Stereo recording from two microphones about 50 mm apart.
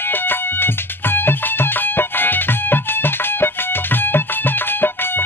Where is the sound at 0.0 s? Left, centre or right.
Left.